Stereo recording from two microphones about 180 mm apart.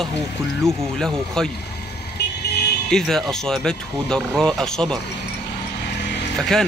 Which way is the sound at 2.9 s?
Centre (ahead or behind).